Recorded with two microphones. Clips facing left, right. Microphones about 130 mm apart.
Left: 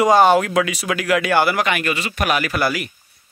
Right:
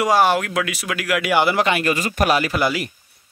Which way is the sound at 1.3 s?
20° right (ahead or behind).